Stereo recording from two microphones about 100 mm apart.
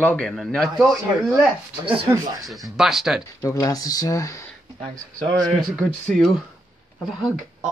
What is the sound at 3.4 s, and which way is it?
Speech, 30° left (ahead or behind).